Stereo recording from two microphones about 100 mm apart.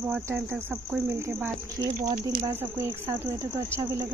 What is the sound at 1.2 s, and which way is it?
Speech, 20° right (ahead or behind).